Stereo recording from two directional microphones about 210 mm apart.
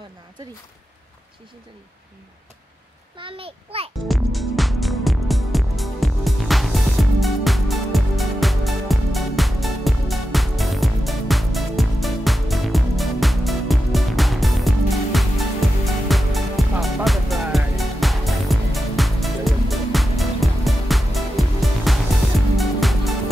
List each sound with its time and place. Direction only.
3.2 s a child's voice: 25° right (ahead or behind)
4.1 s music: centre (ahead or behind)